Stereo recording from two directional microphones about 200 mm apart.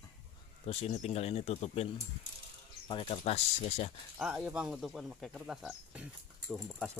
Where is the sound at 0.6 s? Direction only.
35° left (ahead or behind).